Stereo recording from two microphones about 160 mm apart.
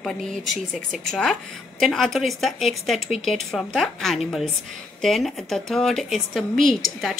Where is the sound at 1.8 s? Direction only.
Centre (ahead or behind).